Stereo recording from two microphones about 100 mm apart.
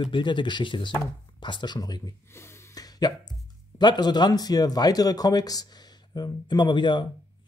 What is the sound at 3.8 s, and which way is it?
Speech, 45° left (ahead or behind).